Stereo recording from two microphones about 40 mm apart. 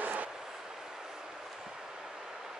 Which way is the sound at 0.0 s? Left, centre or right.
Right.